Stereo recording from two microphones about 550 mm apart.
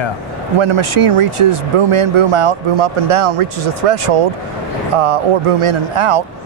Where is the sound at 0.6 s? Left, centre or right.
Right.